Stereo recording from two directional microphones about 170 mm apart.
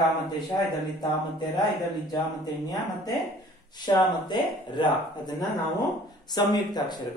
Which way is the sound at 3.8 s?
25° left (ahead or behind).